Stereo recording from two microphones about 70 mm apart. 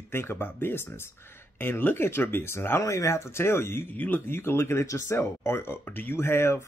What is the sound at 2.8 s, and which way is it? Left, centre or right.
Speech, left.